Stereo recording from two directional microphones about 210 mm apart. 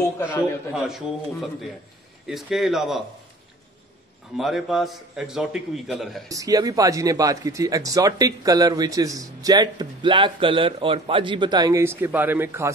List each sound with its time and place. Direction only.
0.0 s a man's voice: 10° left (ahead or behind)
0.8 s a man's voice: centre (ahead or behind)
4.4 s a man's voice: centre (ahead or behind)
6.2 s speech: 15° right (ahead or behind)